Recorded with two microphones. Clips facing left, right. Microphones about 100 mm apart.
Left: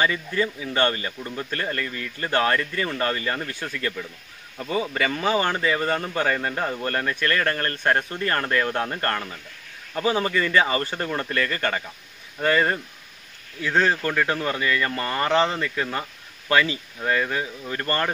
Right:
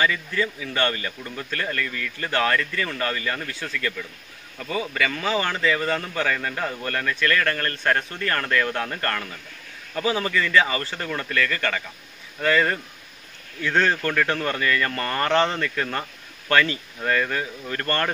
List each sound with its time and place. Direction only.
0.0 s speech: 25° left (ahead or behind)
3.5 s speech: 15° left (ahead or behind)
4.6 s speech: 25° left (ahead or behind)
13.6 s speech: 10° left (ahead or behind)